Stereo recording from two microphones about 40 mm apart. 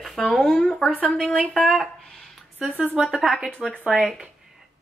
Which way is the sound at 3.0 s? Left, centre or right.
Centre.